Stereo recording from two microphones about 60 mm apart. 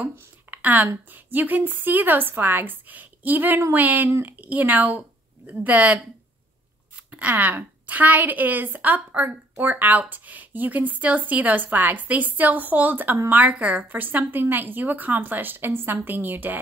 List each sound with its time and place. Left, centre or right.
0.0 s speech: right
4.4 s a woman's voice: right
7.1 s a woman's voice: right